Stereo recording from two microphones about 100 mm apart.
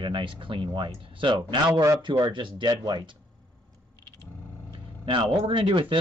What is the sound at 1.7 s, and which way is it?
Speech, 30° right (ahead or behind).